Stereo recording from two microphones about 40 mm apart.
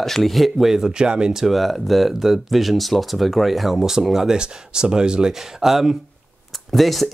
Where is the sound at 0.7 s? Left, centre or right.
Centre.